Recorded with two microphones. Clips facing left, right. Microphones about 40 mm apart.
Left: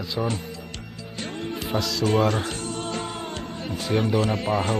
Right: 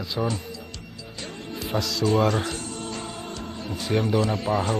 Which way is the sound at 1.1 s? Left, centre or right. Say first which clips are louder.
Left 5 dB; left.